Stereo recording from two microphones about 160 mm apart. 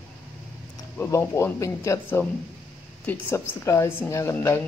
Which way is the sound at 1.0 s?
20° left (ahead or behind).